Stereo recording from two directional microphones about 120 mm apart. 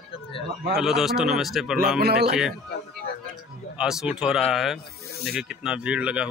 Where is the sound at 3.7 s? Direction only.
5° right (ahead or behind).